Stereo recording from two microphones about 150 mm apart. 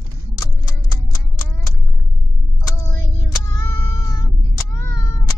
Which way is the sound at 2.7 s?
15° left (ahead or behind).